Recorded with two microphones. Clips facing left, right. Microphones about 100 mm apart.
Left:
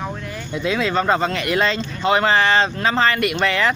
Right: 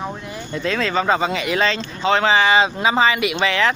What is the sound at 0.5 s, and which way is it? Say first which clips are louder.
Speech: left 1 dB; 5° left (ahead or behind).